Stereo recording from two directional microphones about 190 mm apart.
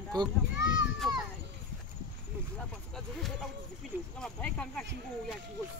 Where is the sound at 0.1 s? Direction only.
20° right (ahead or behind).